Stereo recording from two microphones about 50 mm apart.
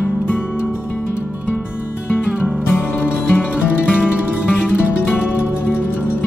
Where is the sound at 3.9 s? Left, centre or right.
Centre.